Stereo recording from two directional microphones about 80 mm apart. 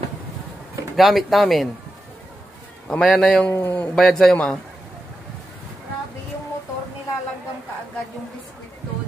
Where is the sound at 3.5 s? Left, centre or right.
Left.